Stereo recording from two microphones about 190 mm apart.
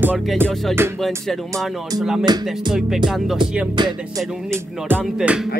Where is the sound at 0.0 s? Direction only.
10° right (ahead or behind).